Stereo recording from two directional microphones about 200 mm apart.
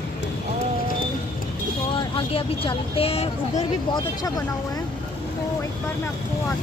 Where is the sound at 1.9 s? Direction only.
25° left (ahead or behind).